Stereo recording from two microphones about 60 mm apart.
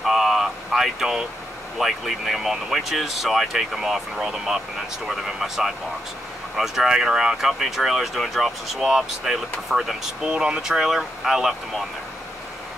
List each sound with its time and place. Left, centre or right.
0.0 s a sound: centre
1.8 s speech: centre
10.2 s speech: centre